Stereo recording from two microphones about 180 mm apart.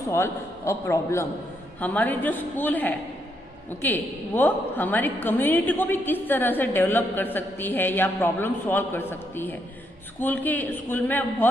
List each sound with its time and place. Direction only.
0.1 s a woman's voice: 15° left (ahead or behind)